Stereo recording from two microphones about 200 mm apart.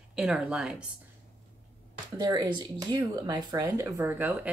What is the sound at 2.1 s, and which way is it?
Speech, 20° right (ahead or behind).